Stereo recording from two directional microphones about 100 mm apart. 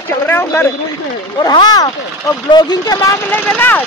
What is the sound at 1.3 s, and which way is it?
Speech, 40° left (ahead or behind).